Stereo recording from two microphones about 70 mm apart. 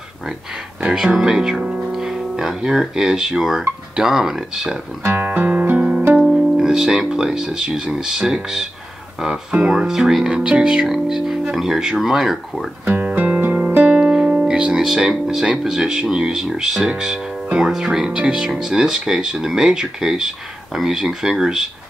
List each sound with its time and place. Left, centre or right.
0.8 s speech: centre
5.0 s music: right
6.1 s speech: centre
12.8 s music: right
13.9 s music: centre
14.9 s speech: centre